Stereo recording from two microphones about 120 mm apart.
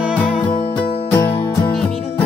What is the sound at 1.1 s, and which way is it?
Music, 15° left (ahead or behind).